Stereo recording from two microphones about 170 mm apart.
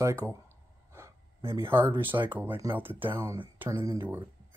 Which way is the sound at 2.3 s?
10° right (ahead or behind).